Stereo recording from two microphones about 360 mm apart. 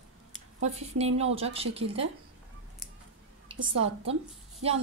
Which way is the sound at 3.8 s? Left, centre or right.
Centre.